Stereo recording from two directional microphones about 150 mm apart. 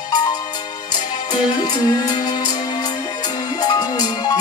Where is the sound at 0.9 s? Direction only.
25° left (ahead or behind).